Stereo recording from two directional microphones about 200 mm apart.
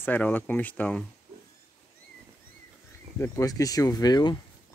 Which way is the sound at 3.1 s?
15° left (ahead or behind).